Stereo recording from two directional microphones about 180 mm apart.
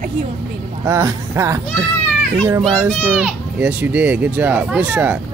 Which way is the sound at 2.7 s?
10° right (ahead or behind).